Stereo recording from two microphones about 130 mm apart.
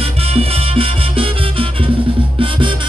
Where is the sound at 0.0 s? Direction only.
50° right (ahead or behind).